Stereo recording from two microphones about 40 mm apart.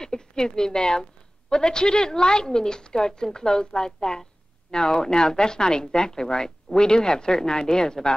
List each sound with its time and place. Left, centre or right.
0.0 s a woman's voice: centre